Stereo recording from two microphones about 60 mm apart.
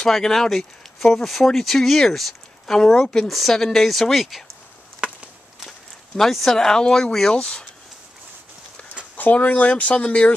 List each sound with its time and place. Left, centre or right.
0.0 s speech: centre
6.1 s speech: centre
9.1 s speech: left